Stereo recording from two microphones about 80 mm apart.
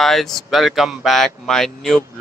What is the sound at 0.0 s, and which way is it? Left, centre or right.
Speech, centre.